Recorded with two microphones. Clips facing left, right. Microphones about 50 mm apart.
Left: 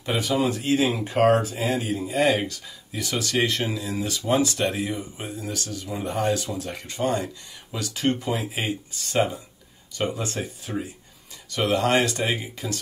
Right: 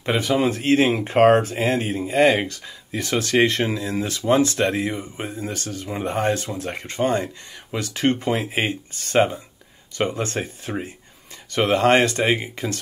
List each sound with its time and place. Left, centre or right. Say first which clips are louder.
0.0 s speech: right 3 dB; right